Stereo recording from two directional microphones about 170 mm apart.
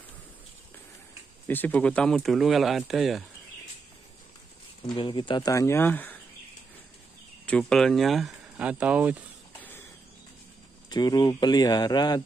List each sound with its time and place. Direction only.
1.5 s speech: 10° left (ahead or behind)
4.9 s speech: 30° left (ahead or behind); by 6.1 s 10° left (ahead or behind)
7.4 s speech: 5° left (ahead or behind)
9.6 s a sound: 10° left (ahead or behind)
10.9 s speech: 25° left (ahead or behind)